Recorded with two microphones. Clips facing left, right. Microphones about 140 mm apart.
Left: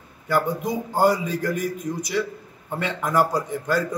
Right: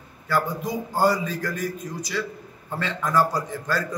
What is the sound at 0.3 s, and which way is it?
A man's voice, 15° left (ahead or behind).